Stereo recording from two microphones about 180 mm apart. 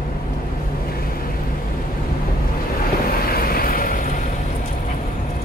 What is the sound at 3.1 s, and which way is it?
Vehicle, 55° left (ahead or behind).